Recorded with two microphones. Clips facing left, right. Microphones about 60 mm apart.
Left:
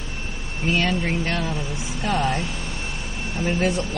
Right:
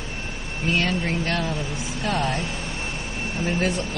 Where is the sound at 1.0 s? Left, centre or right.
Centre.